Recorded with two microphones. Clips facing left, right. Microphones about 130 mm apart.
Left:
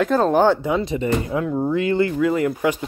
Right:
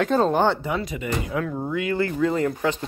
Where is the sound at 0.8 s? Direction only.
30° left (ahead or behind).